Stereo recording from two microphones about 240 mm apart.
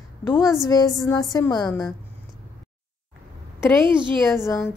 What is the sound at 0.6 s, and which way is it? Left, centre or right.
A woman's voice, centre.